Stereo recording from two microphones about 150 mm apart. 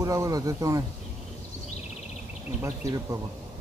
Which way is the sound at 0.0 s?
20° right (ahead or behind).